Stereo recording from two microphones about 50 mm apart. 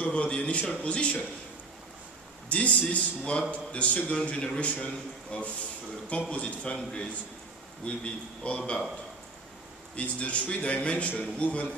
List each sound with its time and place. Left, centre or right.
0.0 s a man's voice: left
2.5 s a man's voice: left
9.9 s a man's voice: left